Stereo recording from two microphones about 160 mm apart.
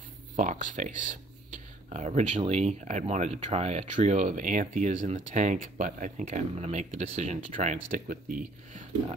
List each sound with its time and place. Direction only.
0.4 s speech: 50° right (ahead or behind)